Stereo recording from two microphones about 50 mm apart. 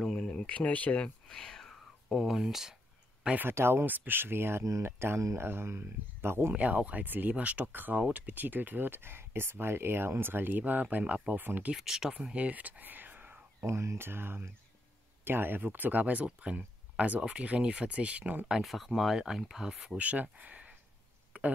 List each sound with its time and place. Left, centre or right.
0.0 s a sound: centre
0.3 s speech: left
1.3 s whispering: centre
2.0 s speech: centre
3.4 s speech: right
3.8 s speech: right
4.6 s speech: right
6.5 s speech: right
11.7 s speech: centre
12.1 s whispering: right
13.7 s speech: right
18.6 s speech: centre
20.0 s speech: right
21.3 s a sound: right